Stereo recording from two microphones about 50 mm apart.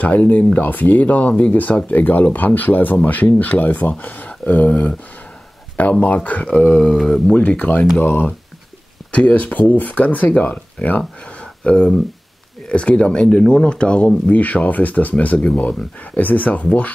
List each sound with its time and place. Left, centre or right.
0.0 s speech: left
6.7 s speech: centre
7.3 s speech: left
11.6 s speech: centre
14.3 s speech: left